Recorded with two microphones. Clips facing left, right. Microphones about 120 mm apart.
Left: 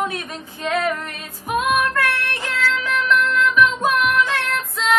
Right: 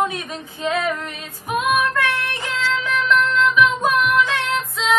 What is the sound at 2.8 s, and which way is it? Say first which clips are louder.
Music: right 2 dB; centre (ahead or behind).